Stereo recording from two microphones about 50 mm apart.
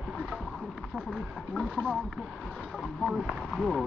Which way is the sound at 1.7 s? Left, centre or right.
Centre.